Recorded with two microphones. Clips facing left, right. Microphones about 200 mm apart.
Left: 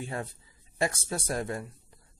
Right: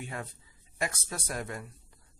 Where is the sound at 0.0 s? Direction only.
30° left (ahead or behind).